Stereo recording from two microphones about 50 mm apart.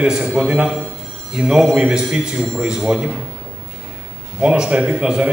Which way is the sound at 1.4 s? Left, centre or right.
Centre.